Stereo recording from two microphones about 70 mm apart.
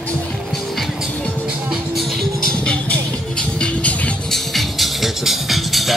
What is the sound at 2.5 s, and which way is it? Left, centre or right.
Music, centre.